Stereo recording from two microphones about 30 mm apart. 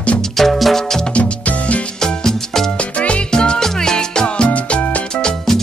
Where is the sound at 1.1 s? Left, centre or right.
Left.